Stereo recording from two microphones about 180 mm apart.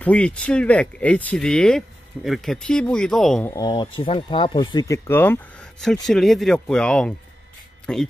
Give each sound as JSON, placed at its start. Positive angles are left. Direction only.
{"t": 0.0, "sound": "speech", "side_deg": 5}
{"t": 3.4, "sound": "speech", "side_deg": 20}